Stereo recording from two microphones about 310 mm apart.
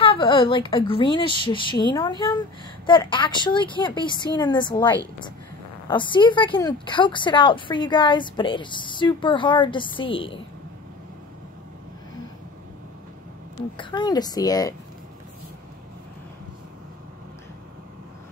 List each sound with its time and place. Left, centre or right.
0.0 s speech: centre
13.7 s speech: centre